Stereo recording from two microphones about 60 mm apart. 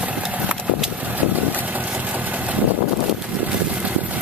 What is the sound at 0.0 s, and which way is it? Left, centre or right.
Horse, right.